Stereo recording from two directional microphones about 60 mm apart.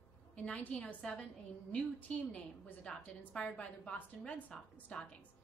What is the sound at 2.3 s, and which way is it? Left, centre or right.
A woman's voice, left.